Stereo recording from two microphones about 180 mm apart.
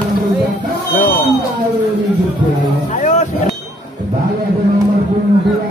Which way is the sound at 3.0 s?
45° left (ahead or behind).